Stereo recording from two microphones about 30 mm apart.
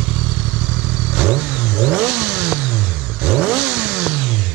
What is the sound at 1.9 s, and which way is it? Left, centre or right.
Vehicle, right.